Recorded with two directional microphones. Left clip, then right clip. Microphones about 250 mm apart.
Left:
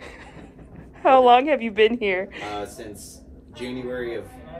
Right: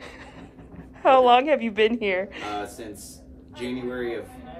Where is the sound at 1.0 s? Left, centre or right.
Centre.